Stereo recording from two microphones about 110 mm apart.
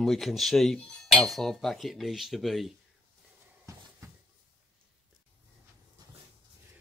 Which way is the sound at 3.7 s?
30° right (ahead or behind).